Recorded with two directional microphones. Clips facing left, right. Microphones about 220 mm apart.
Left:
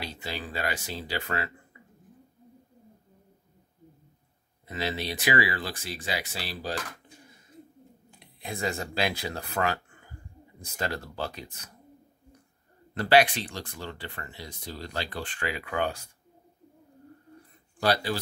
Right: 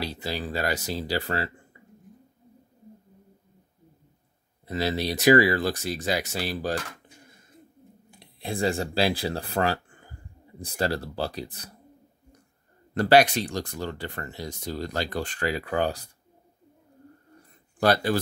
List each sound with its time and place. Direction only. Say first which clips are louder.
0.0 s speech: right 5 dB; 35° right (ahead or behind)
4.6 s speech: right 5 dB; 40° right (ahead or behind)
8.2 s speech: right 6 dB; 30° right (ahead or behind)
12.9 s speech: right 3 dB; 40° right (ahead or behind)
17.7 s speech: right 4 dB; 50° right (ahead or behind)